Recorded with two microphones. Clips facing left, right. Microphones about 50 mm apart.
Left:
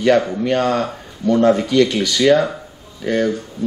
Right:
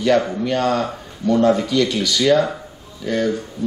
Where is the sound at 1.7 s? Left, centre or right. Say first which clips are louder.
Left 3 dB; left.